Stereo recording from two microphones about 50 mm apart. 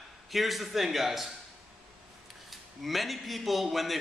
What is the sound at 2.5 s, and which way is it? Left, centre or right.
A man's voice, centre.